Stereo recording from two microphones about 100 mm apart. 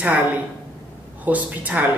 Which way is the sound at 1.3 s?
15° right (ahead or behind).